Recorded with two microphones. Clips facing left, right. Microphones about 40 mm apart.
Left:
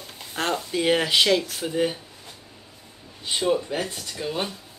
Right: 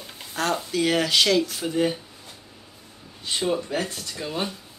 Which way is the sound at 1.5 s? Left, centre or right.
Centre.